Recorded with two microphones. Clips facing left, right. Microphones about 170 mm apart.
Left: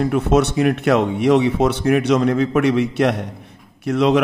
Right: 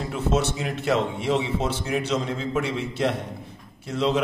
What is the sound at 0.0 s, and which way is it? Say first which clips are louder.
Speech: left 8 dB; 65° left (ahead or behind).